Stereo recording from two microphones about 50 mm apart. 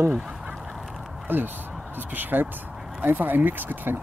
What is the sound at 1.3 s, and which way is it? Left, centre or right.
Speech, right.